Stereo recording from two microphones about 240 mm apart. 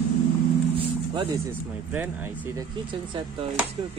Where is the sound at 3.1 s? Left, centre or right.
Right.